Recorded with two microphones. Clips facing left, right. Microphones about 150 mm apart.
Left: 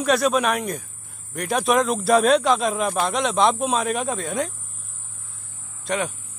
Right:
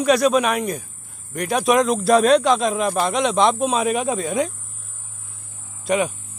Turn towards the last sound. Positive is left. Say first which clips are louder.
# right 5 dB
turn(degrees=-10)  # may be behind; listen again after turning